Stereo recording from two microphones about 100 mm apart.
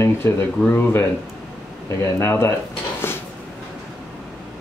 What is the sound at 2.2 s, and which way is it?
Speech, 25° left (ahead or behind).